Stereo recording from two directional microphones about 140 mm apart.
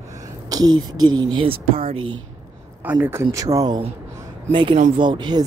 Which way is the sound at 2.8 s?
15° right (ahead or behind).